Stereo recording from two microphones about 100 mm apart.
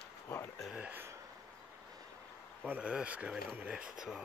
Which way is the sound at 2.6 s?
15° right (ahead or behind).